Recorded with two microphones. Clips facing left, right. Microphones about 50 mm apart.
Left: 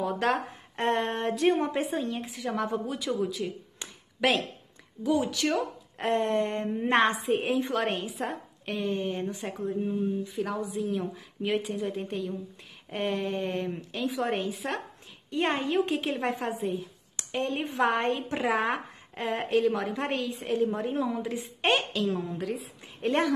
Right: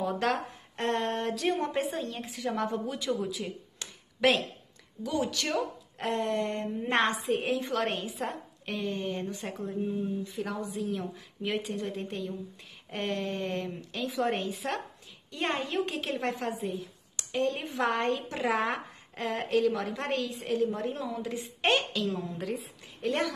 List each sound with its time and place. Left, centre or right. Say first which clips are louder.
0.3 s a woman's voice: left 3 dB; left
1.7 s a woman's voice: left 2 dB; centre
3.8 s a sound: left 1 dB; centre
4.2 s a woman's voice: even; centre
6.0 s a woman's voice: left 3 dB; left
7.0 s a woman's voice: left 1 dB; centre
15.3 s a woman's voice: left 4 dB; centre
17.2 s a sound: even; left
17.6 s a woman's voice: left 2 dB; left
20.3 s a woman's voice: left 2 dB; left; by 22.7 s centre
23.0 s speech: left 4 dB; left